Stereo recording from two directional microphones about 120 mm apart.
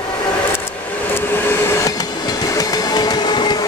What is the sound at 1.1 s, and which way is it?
Train, 20° left (ahead or behind).